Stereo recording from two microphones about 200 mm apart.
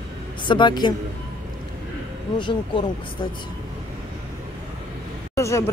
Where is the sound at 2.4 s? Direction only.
25° left (ahead or behind).